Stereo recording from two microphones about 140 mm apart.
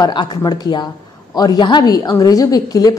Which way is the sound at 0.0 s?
35° left (ahead or behind).